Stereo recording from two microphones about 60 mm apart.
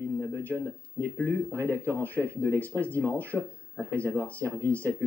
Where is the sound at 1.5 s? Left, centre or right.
Left.